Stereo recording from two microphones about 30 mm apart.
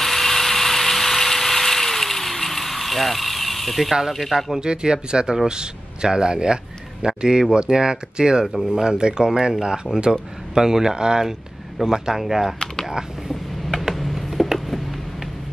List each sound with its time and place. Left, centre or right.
0.0 s ratchet: centre
4.1 s speech: centre
4.6 s speech: right
10.5 s speech: centre
12.2 s speech: centre
13.7 s a sound: centre